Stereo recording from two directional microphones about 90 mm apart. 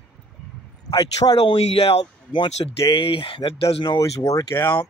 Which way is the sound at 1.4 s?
90° left.